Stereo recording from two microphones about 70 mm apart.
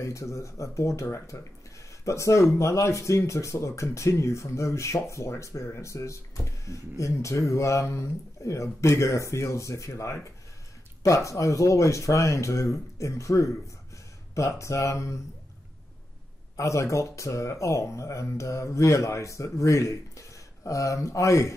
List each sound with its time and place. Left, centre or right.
0.0 s speech: left
16.5 s speech: left